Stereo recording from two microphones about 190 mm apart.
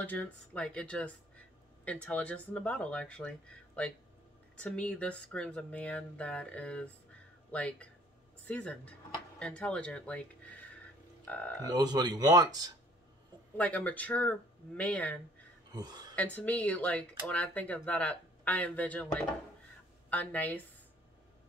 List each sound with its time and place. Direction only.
0.0 s speech: 10° left (ahead or behind)
11.6 s speech: 20° right (ahead or behind)
13.6 s speech: 5° left (ahead or behind)
15.7 s speech: 20° right (ahead or behind)
16.2 s speech: 5° left (ahead or behind)